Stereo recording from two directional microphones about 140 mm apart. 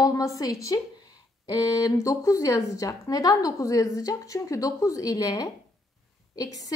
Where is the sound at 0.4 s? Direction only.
25° left (ahead or behind).